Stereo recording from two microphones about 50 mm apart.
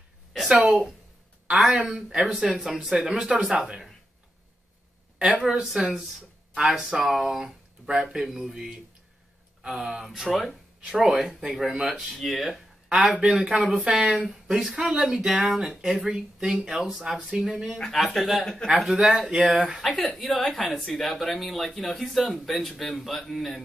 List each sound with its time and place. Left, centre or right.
0.5 s a woman's voice: right; by 3.9 s centre
5.2 s speech: centre
9.6 s speech: centre
12.9 s speech: centre
14.8 s speech: centre
17.9 s speech: centre
18.4 s speech: centre
18.9 s speech: centre
19.4 s speech: right
19.7 s speech: centre